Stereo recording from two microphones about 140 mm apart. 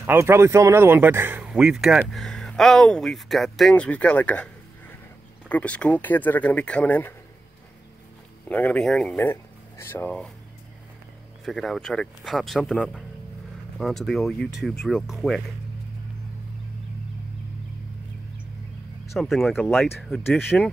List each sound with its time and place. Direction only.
0.0 s speech: 15° right (ahead or behind); by 7.2 s 15° left (ahead or behind)
8.5 s speech: 10° left (ahead or behind)
9.1 s speech: 15° left (ahead or behind)
11.4 s speech: centre (ahead or behind)
19.1 s speech: centre (ahead or behind)
20.2 s speech: 15° left (ahead or behind)